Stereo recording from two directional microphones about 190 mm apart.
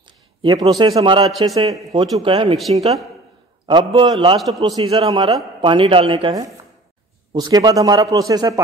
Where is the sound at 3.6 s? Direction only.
25° right (ahead or behind).